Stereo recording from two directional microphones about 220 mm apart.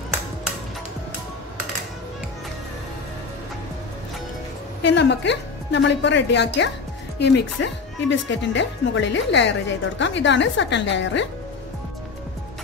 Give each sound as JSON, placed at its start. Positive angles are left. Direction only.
{"t": 4.8, "sound": "speech", "side_deg": 55}